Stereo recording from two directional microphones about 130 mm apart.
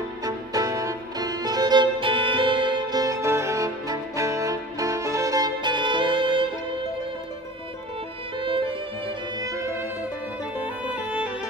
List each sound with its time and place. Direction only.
0.2 s music: 30° right (ahead or behind)
8.5 s music: 40° right (ahead or behind)
9.4 s violin: 25° right (ahead or behind)
10.6 s music: 10° right (ahead or behind)